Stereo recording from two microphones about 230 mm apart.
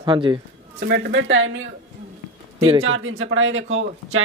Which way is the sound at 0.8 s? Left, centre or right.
Right.